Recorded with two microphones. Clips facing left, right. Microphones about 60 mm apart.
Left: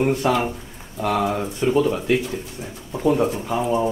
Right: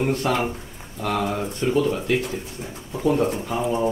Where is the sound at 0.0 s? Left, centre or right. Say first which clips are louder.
Left 3 dB; centre.